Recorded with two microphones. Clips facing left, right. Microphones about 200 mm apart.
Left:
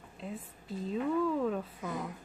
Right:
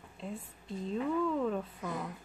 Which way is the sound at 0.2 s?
Centre (ahead or behind).